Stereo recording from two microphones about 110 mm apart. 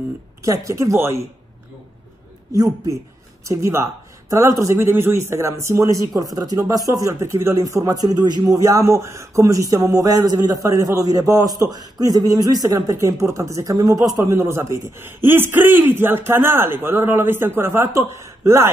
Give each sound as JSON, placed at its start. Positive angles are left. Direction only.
{"t": 0.4, "sound": "speech", "side_deg": -30}
{"t": 2.5, "sound": "speech", "side_deg": -30}